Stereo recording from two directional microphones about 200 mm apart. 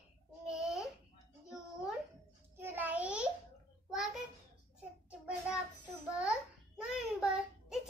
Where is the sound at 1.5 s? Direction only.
5° right (ahead or behind).